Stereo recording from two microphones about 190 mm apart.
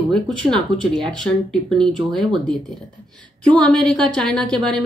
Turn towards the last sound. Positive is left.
turn(degrees=5)  # may be behind; listen again after turning